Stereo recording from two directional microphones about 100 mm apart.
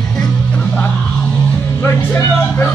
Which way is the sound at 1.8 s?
25° left (ahead or behind).